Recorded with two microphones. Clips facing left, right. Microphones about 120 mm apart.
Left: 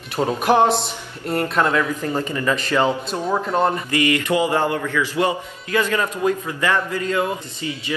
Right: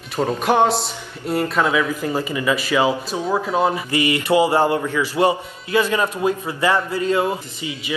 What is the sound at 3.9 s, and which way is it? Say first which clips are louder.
A man's voice: right 1 dB; 20° right (ahead or behind).